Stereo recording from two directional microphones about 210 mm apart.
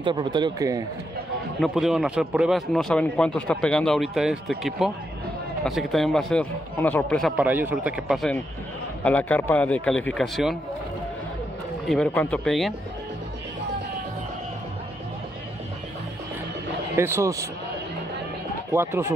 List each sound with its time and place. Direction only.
0.0 s a man's voice: 20° right (ahead or behind)
1.6 s a man's voice: centre (ahead or behind)
11.8 s a man's voice: centre (ahead or behind)
16.9 s speech: 10° right (ahead or behind)
18.7 s speech: 10° right (ahead or behind)